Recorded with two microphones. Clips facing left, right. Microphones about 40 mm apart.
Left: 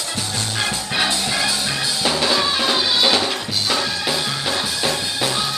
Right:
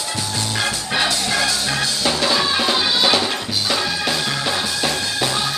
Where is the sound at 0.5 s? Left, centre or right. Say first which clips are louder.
Right 1 dB; centre.